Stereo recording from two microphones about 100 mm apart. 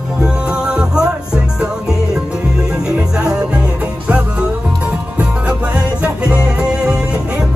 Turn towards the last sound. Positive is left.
turn(degrees=-10)  # may be behind; listen again after turning